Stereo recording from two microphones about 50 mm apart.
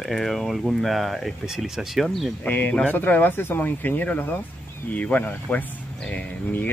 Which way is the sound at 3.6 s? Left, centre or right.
Left.